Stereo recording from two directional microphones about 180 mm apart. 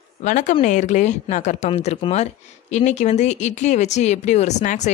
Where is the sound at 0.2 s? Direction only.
45° left (ahead or behind).